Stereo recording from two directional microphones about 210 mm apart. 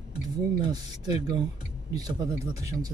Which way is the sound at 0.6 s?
20° right (ahead or behind).